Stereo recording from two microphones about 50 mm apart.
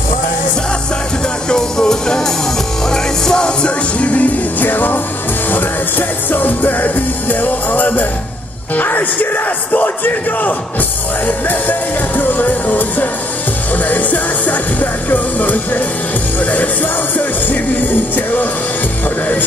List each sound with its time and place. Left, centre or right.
1.5 s music: centre; by 15.8 s left